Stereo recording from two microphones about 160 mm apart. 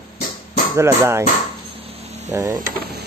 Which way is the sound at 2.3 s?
20° right (ahead or behind).